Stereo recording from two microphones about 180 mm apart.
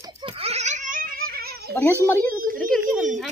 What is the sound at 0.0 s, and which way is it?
Giggle, 30° right (ahead or behind).